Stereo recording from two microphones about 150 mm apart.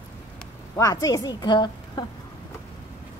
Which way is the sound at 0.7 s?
20° left (ahead or behind).